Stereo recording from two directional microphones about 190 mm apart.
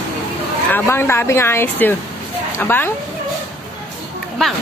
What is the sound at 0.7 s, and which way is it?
Speech, 10° left (ahead or behind).